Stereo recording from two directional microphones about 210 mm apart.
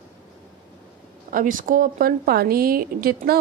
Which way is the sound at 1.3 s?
40° right (ahead or behind).